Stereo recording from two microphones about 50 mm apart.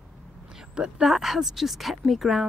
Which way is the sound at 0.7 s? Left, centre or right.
Centre.